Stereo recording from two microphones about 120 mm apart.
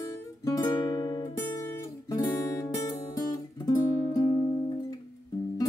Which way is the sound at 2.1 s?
30° left (ahead or behind).